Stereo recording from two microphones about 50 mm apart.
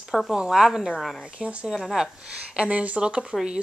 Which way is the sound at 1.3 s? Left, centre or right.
Right.